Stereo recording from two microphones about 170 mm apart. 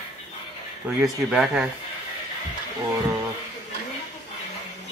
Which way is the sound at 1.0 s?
Centre (ahead or behind).